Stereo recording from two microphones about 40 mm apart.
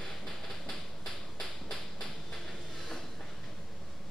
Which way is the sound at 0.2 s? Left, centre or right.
Centre.